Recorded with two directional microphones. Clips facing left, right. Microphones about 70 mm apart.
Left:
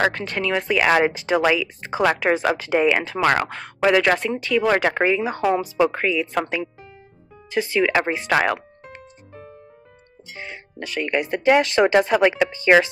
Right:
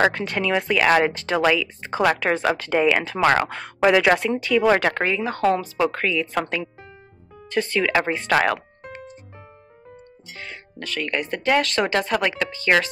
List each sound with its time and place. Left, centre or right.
0.0 s speech: centre
10.3 s speech: centre